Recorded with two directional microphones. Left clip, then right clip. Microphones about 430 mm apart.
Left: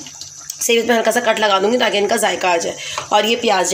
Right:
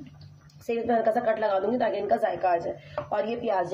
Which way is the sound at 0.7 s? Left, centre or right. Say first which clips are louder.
Left 10 dB; right.